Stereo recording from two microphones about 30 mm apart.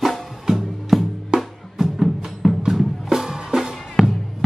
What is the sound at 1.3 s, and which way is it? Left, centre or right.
Music, right.